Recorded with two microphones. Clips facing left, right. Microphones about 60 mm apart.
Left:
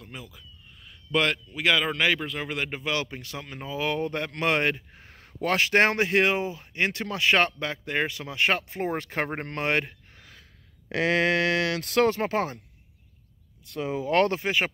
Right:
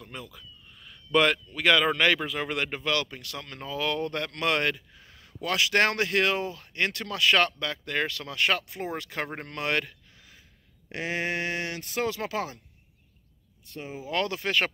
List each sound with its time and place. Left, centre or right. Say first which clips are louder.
0.0 s speech: right 1 dB; centre
2.9 s speech: even; left
4.9 s speech: left 4 dB; left
10.1 s gasp: left 4 dB; left
10.9 s speech: left 7 dB; left
12.1 s speech: left 5 dB; left
13.7 s speech: left 7 dB; left
14.4 s speech: left 1 dB; centre